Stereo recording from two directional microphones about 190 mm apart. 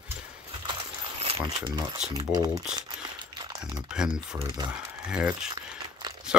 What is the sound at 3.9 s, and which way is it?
Speech, 5° right (ahead or behind).